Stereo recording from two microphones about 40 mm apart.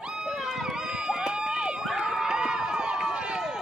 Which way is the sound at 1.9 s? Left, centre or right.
Centre.